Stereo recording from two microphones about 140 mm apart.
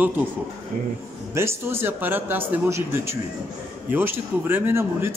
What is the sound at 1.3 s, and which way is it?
A man's voice, 15° right (ahead or behind).